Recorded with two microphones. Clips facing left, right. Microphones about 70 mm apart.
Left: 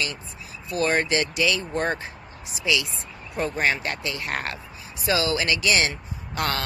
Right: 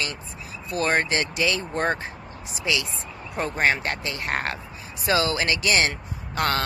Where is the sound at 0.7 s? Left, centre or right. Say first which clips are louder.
Even; right.